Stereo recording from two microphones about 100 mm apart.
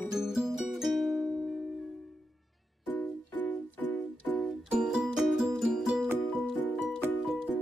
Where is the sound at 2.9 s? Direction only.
15° left (ahead or behind).